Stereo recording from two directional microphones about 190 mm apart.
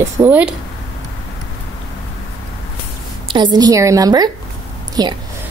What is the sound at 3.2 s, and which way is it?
A woman's voice, 25° right (ahead or behind).